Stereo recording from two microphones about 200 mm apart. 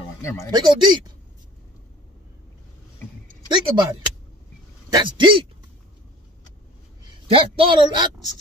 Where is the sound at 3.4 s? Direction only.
25° right (ahead or behind).